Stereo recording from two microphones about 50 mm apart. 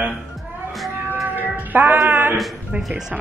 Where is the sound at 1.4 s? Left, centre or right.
Right.